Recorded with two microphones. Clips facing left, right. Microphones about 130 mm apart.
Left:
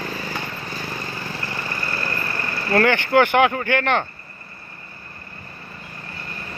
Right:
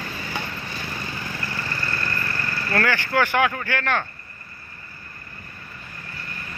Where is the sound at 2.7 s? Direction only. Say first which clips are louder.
Left 6 dB; 25° left (ahead or behind).